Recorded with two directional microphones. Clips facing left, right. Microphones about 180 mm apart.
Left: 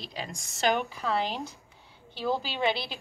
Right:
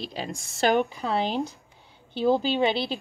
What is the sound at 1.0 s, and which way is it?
A woman's voice, 30° right (ahead or behind).